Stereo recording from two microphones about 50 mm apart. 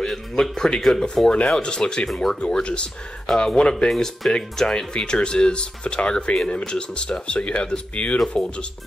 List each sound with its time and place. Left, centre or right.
0.0 s speech: centre
3.9 s speech: centre
4.3 s speech: centre